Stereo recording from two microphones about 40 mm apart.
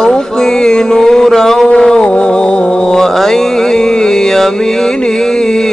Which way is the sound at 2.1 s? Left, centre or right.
Left.